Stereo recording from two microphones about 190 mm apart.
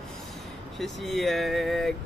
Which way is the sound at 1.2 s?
Centre (ahead or behind).